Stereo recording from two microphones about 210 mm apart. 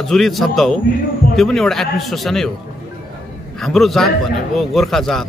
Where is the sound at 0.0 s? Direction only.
Centre (ahead or behind).